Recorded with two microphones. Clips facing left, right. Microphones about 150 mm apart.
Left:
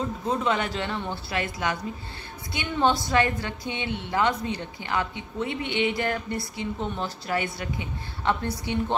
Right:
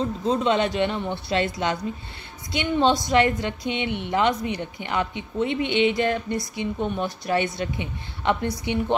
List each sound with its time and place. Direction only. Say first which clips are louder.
0.2 s a woman's voice: right 5 dB; 20° right (ahead or behind)